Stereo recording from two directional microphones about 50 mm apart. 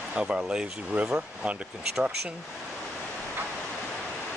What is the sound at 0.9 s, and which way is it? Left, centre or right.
Speech, right.